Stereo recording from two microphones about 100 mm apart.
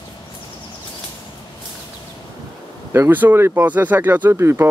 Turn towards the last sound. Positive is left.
turn(degrees=-25)  # may be behind; listen again after turning